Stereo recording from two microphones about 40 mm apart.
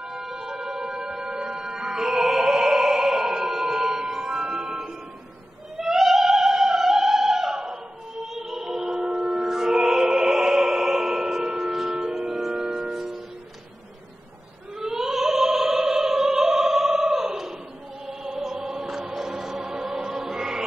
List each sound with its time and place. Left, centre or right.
0.0 s music: centre
5.8 s opera: centre
8.3 s music: centre
14.8 s opera: centre
18.0 s choir: centre
19.6 s music: centre